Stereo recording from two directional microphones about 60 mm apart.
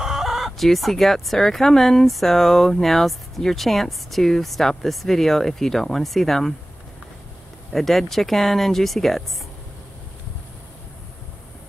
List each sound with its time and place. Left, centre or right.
0.0 s speech: centre
7.7 s speech: centre